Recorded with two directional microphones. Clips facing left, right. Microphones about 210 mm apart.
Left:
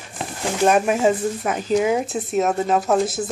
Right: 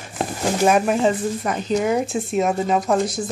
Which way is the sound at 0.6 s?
Centre (ahead or behind).